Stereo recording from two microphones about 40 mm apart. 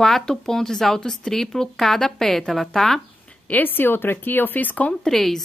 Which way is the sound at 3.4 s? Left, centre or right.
Left.